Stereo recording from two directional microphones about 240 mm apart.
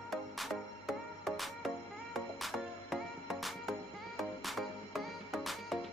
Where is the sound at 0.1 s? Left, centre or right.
Centre.